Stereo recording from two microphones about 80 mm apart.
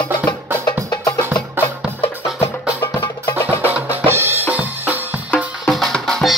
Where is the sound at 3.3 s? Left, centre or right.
Right.